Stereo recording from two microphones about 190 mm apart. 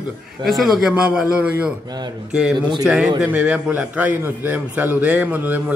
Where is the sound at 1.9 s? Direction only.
20° right (ahead or behind).